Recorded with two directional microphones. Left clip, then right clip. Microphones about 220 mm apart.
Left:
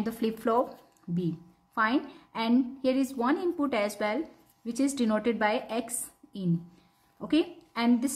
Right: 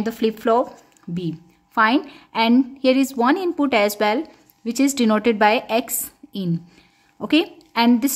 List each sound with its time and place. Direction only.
0.0 s speech: 25° right (ahead or behind)
1.8 s a woman's voice: 30° right (ahead or behind)